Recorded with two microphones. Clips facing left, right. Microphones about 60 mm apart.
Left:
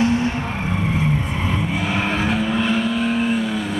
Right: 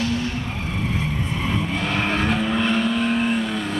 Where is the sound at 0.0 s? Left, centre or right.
Left.